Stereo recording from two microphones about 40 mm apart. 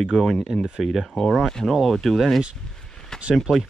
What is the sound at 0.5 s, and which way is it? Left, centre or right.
Speech, centre.